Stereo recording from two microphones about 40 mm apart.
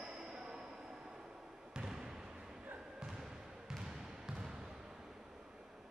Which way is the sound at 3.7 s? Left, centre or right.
Centre.